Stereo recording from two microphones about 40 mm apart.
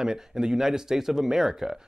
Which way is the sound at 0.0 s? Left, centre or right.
Centre.